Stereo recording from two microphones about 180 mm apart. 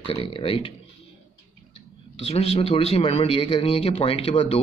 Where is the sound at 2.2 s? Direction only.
30° left (ahead or behind).